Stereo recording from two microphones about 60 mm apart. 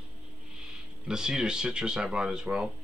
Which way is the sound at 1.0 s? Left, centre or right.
Centre.